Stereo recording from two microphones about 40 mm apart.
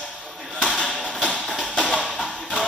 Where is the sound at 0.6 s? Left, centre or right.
Centre.